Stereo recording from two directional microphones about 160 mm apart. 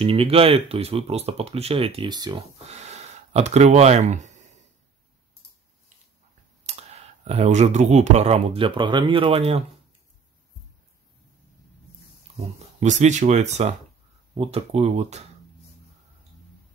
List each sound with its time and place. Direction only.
0.0 s speech: 35° right (ahead or behind)
2.7 s speech: 45° right (ahead or behind)
6.6 s speech: 45° right (ahead or behind)
12.4 s speech: 45° right (ahead or behind)